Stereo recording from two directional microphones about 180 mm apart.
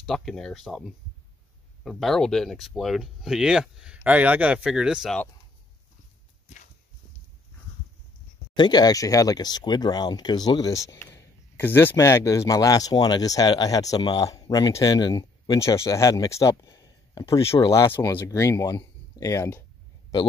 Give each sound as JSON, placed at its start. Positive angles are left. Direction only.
{"t": 0.0, "sound": "speech", "side_deg": 0}
{"t": 8.5, "sound": "speech", "side_deg": 25}
{"t": 17.4, "sound": "speech", "side_deg": 30}
{"t": 17.6, "sound": "speech", "side_deg": 20}